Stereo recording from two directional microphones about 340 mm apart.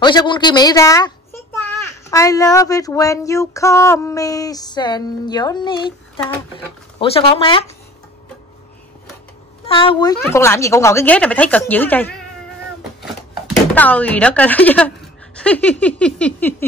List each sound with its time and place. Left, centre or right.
0.0 s a child's voice: centre
9.7 s a child's voice: centre
13.7 s speech: centre